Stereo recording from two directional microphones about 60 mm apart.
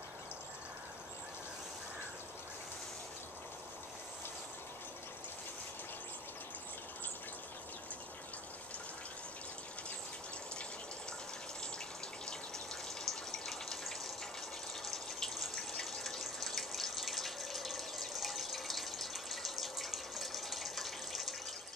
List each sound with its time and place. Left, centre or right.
13.0 s water: centre